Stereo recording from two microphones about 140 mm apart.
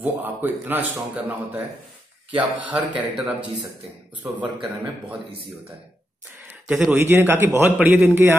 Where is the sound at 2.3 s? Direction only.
10° right (ahead or behind).